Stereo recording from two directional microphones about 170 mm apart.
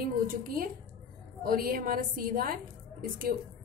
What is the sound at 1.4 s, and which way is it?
A woman's voice, 60° right (ahead or behind).